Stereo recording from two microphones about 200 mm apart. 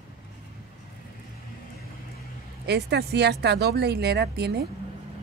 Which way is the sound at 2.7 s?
55° right (ahead or behind).